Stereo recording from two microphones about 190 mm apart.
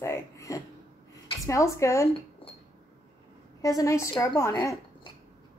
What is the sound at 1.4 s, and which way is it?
Speech, 15° left (ahead or behind).